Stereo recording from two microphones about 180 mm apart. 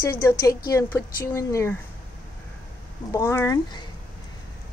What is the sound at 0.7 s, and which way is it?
Speech, 15° left (ahead or behind).